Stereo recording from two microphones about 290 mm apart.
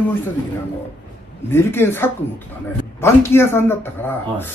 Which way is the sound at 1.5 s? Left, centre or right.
Centre.